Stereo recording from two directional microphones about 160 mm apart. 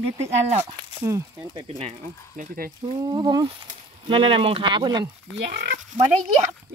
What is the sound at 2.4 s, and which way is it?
Speech, 65° right (ahead or behind).